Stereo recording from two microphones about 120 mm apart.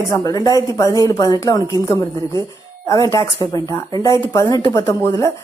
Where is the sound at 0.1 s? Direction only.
30° left (ahead or behind).